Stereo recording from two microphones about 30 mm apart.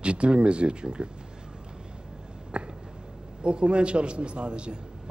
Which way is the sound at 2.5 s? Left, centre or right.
Right.